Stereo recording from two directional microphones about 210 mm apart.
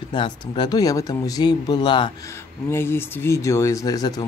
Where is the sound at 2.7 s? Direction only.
10° left (ahead or behind).